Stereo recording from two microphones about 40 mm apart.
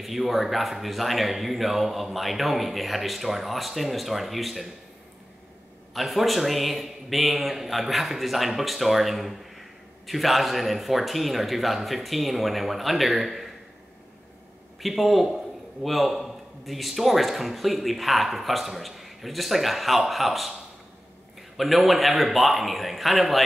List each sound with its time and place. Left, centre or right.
0.0 s a man's voice: centre
5.9 s a man's voice: centre
14.8 s a man's voice: centre